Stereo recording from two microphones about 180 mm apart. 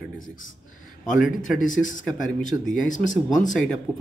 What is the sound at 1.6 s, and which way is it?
Speech, 45° left (ahead or behind).